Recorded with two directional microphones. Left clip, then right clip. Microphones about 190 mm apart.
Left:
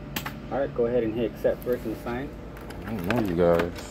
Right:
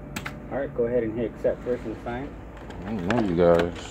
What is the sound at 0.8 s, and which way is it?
Speech, 15° right (ahead or behind).